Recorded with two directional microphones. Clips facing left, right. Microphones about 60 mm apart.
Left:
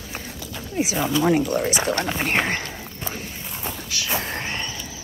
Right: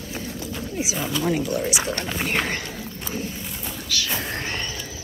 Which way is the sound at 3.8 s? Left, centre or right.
Left.